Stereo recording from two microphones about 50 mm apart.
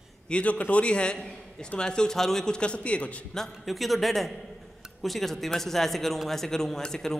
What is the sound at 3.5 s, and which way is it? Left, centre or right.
A man's voice, centre.